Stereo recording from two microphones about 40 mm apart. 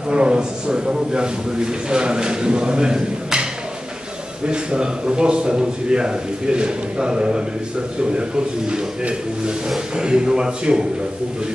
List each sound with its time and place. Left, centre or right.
0.1 s a man's voice: right
4.5 s a man's voice: right
9.9 s a man's voice: centre